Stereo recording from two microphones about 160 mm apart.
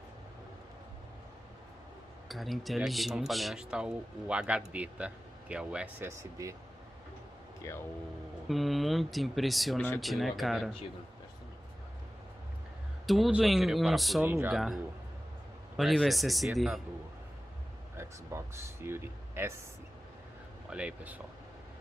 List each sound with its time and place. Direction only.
2.2 s speech: centre (ahead or behind); by 6.5 s 15° right (ahead or behind)
8.5 s speech: centre (ahead or behind)
13.0 s speech: centre (ahead or behind)
14.2 s speech: 15° right (ahead or behind)
14.5 s speech: centre (ahead or behind)
17.9 s speech: 15° right (ahead or behind)
20.7 s speech: 10° right (ahead or behind)